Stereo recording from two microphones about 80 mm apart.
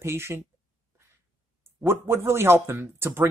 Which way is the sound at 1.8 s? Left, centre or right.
Right.